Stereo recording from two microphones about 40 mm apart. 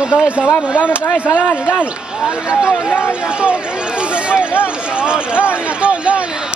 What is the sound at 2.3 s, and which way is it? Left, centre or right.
Speech, right.